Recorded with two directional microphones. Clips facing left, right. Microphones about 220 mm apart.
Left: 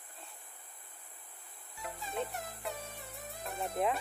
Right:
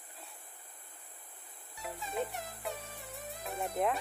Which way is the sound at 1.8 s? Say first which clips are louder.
Right 1 dB; centre (ahead or behind).